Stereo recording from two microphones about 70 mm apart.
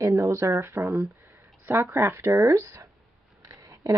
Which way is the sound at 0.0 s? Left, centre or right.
Right.